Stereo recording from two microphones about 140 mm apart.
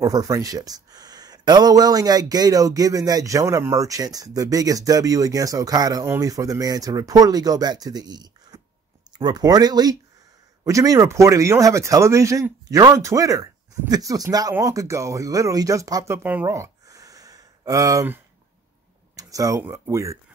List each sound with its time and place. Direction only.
0.0 s speech: 25° right (ahead or behind)
19.1 s a sound: 25° right (ahead or behind)
19.6 s speech: 20° right (ahead or behind)